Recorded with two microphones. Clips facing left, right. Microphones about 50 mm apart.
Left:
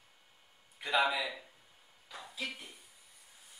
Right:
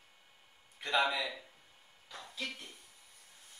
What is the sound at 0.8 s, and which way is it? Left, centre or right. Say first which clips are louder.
A man's voice: left 1 dB; centre.